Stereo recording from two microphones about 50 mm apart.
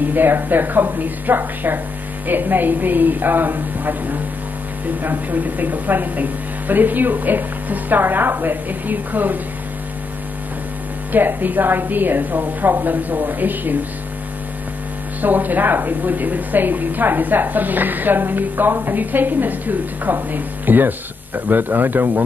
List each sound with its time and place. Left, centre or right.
0.1 s a woman's voice: right
11.1 s a woman's voice: right
15.2 s a woman's voice: right